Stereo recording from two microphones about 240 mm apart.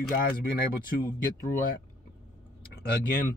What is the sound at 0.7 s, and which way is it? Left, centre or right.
Speech, left.